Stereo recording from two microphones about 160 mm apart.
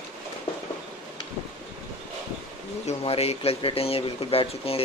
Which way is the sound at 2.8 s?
40° left (ahead or behind).